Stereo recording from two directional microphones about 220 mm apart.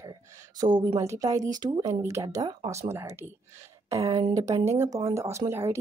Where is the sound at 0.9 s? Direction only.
10° right (ahead or behind).